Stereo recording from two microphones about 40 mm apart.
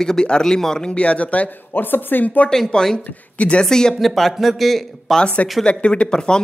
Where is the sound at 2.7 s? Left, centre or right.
Centre.